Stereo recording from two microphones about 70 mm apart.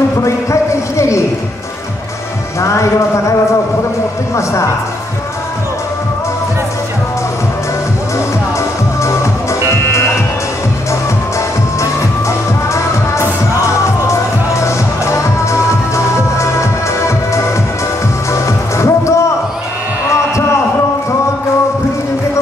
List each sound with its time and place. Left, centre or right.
0.2 s a sound: left
2.6 s speech: left
8.5 s music: left
11.8 s music: left
18.3 s music: left